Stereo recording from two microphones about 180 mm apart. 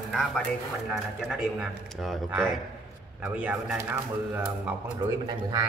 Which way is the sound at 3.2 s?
5° right (ahead or behind).